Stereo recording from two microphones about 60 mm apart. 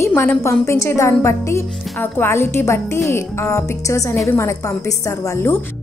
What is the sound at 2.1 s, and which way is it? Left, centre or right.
Music, left.